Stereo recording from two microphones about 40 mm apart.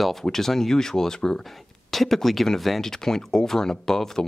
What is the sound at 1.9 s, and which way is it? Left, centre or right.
Speech, centre.